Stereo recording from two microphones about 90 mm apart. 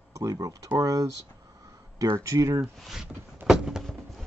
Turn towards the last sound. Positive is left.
turn(degrees=-5)  # may be behind; listen again after turning